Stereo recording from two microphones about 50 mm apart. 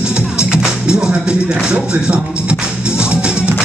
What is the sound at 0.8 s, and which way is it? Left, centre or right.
Music, centre.